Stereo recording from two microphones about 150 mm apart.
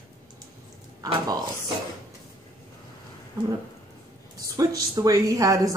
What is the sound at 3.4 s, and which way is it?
Speech, 20° right (ahead or behind).